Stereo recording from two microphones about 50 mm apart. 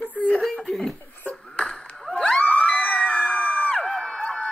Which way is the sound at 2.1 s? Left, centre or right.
Centre.